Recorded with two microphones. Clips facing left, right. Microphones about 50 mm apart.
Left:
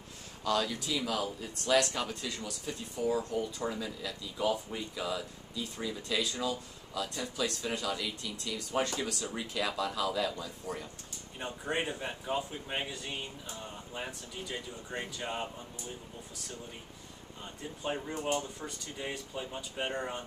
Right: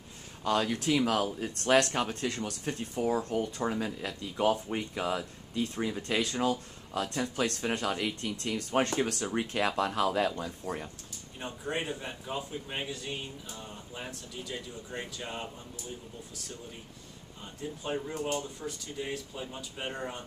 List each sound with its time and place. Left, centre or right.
0.4 s speech: right
0.7 s speech: right
11.3 s speech: centre
17.6 s speech: centre
18.1 s speech: centre
18.4 s speech: centre